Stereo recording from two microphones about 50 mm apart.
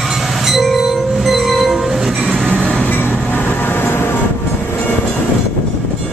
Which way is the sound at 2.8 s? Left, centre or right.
Left.